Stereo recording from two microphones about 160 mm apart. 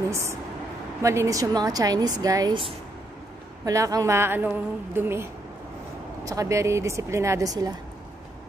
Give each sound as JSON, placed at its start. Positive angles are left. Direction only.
{"t": 0.1, "sound": "a woman's voice", "side_deg": -20}
{"t": 3.6, "sound": "a woman's voice", "side_deg": -20}